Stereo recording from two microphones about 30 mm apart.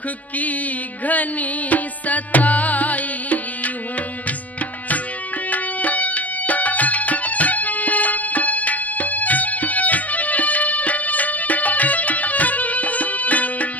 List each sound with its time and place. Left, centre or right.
1.0 s music: left
5.5 s music: left